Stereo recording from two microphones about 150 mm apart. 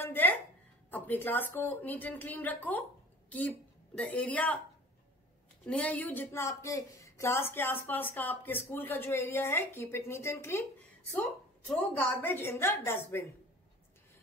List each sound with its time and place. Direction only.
0.0 s a sound: 15° left (ahead or behind)
0.8 s a woman's voice: 10° left (ahead or behind)
5.7 s speech: 10° left (ahead or behind)